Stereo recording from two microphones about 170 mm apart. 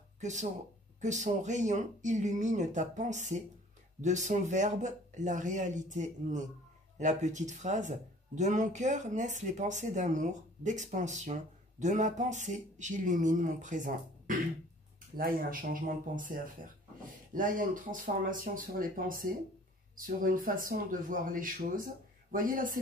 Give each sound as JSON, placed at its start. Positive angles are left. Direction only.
{"t": 0.2, "sound": "speech", "side_deg": -45}